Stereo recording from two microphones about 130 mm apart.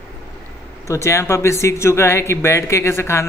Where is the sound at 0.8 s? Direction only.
20° left (ahead or behind).